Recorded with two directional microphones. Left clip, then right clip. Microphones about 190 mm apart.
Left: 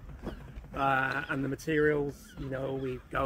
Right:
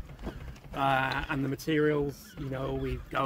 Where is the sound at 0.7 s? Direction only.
20° right (ahead or behind).